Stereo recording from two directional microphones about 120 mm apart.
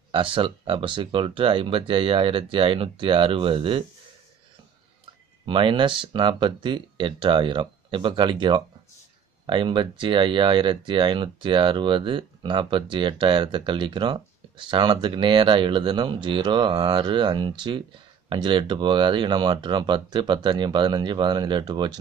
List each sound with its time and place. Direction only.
0.1 s speech: 45° right (ahead or behind)
5.5 s speech: 45° right (ahead or behind)